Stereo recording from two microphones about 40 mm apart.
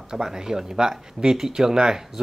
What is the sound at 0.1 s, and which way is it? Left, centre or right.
Speech, centre.